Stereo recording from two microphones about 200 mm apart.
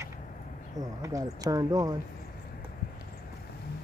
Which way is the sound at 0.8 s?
15° right (ahead or behind).